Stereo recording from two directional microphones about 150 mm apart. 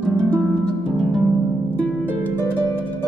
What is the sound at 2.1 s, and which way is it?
Harp, 15° left (ahead or behind).